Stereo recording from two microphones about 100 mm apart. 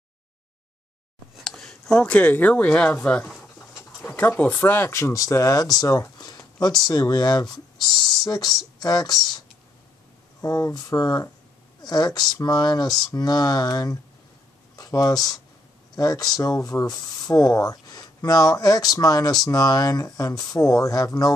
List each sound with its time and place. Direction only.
1.3 s speech: centre (ahead or behind); by 9.1 s 40° left (ahead or behind)
10.4 s speech: 40° left (ahead or behind)